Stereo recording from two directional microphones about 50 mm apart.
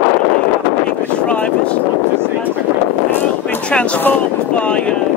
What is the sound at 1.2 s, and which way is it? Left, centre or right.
Vehicle, left.